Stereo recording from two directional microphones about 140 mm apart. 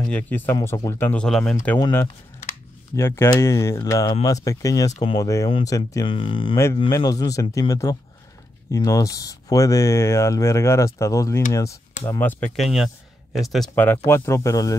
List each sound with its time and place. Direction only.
0.1 s speech: 10° left (ahead or behind)
1.2 s speech: 5° left (ahead or behind)
3.0 s speech: 20° left (ahead or behind)
6.0 s speech: 35° left (ahead or behind)
6.5 s speech: 20° left (ahead or behind)
12.2 s speech: 10° left (ahead or behind)
13.7 s speech: 15° left (ahead or behind)